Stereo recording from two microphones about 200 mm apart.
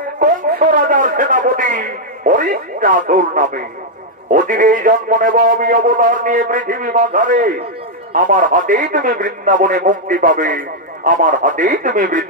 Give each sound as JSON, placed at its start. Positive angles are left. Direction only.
{"t": 0.2, "sound": "a man's voice", "side_deg": -45}